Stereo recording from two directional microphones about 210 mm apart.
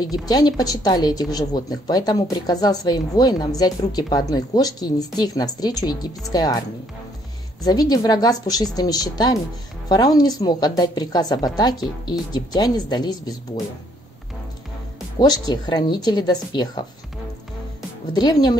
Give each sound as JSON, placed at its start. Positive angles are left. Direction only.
{"t": 0.2, "sound": "a woman's voice", "side_deg": 20}
{"t": 7.9, "sound": "a woman's voice", "side_deg": 20}
{"t": 15.1, "sound": "a woman's voice", "side_deg": 20}
{"t": 18.1, "sound": "a woman's voice", "side_deg": 20}